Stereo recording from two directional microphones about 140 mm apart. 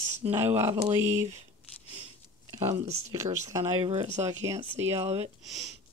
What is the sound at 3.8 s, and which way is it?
Speech, 50° right (ahead or behind).